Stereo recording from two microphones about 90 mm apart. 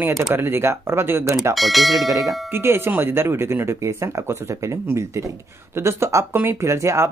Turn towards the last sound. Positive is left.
turn(degrees=-35)  # may be behind; listen again after turning